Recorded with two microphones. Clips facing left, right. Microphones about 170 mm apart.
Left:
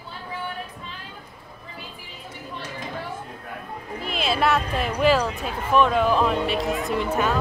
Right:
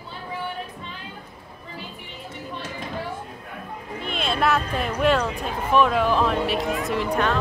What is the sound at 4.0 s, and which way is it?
Speech, centre (ahead or behind).